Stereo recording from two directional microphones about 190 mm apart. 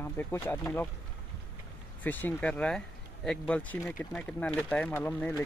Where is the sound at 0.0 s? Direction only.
10° left (ahead or behind).